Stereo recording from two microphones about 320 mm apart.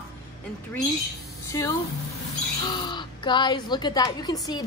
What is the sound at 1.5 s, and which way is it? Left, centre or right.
A woman's voice, centre.